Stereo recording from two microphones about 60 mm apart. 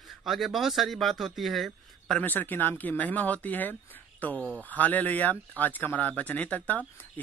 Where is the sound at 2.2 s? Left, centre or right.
Left.